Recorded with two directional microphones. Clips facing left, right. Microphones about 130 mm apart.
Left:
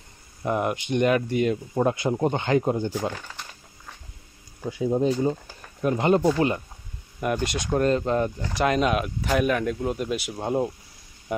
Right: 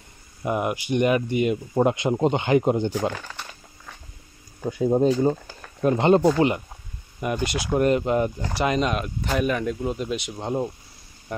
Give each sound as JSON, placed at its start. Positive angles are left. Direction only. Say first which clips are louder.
{"t": 0.4, "sound": "speech", "louder": "even", "side_deg": -5}
{"t": 1.8, "sound": "speech", "louder": "right 3 dB", "side_deg": -20}
{"t": 4.6, "sound": "speech", "louder": "right 3 dB", "side_deg": -45}
{"t": 5.8, "sound": "speech", "louder": "right 3 dB", "side_deg": -25}
{"t": 7.2, "sound": "speech", "louder": "even", "side_deg": 0}
{"t": 8.5, "sound": "speech", "louder": "left 1 dB", "side_deg": 0}